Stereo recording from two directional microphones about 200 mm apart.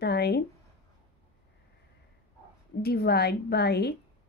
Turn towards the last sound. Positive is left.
turn(degrees=55)  # may be behind; listen again after turning